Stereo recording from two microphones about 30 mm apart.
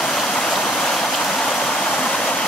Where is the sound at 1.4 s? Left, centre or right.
Left.